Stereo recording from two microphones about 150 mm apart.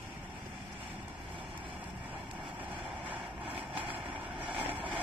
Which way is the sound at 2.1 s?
35° right (ahead or behind).